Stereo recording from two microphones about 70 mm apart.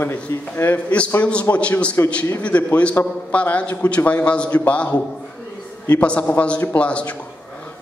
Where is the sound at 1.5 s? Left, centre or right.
Centre.